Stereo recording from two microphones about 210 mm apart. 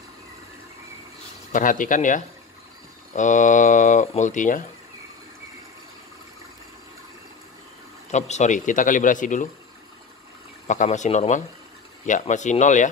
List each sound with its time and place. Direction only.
1.5 s speech: 40° left (ahead or behind)
8.1 s speech: 35° left (ahead or behind)
10.7 s speech: 35° left (ahead or behind)